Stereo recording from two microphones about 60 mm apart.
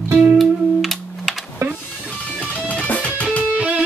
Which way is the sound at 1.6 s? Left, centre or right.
Right.